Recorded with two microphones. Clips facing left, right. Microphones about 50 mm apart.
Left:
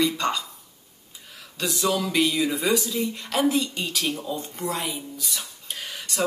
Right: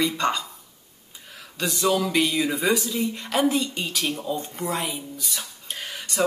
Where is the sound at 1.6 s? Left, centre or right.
Centre.